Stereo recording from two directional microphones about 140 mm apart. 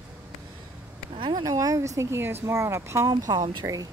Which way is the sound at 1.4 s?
25° right (ahead or behind).